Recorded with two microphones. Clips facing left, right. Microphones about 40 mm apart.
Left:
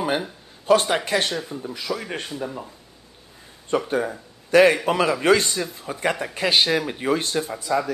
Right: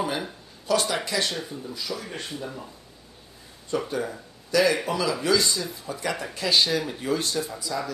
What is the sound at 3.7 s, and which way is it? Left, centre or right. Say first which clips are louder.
Speech: left 5 dB; left.